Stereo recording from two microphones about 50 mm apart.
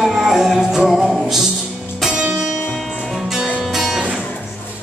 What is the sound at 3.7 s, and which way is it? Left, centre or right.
Music, centre.